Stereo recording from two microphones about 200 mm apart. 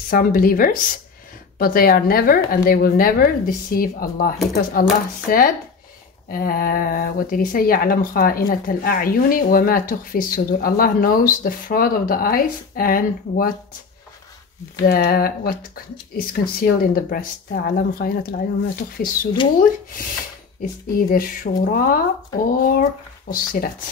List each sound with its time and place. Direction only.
0.1 s speech: 45° left (ahead or behind)
14.9 s speech: 50° left (ahead or behind)